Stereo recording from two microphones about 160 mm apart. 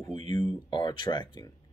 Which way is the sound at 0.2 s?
30° left (ahead or behind).